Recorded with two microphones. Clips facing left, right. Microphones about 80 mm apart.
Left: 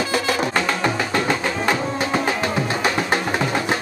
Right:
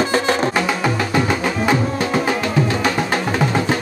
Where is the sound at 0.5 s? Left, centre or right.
Centre.